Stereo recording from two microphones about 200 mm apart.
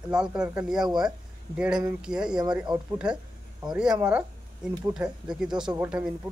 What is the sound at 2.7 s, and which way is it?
Speech, 20° right (ahead or behind).